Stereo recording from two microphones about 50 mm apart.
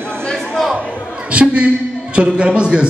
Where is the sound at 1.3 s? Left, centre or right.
Right.